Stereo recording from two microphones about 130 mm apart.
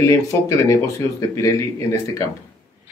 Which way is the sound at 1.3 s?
20° left (ahead or behind).